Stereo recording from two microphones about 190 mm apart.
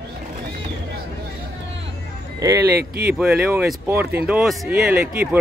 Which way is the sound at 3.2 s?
10° right (ahead or behind).